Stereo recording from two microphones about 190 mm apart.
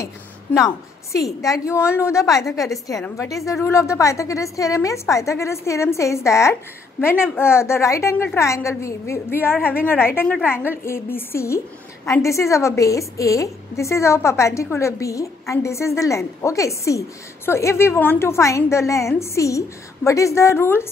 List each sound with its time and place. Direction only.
0.6 s a woman's voice: 15° left (ahead or behind)